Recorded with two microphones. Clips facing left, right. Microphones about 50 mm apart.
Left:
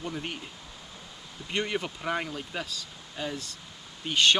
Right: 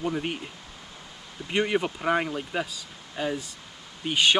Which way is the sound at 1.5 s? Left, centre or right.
Centre.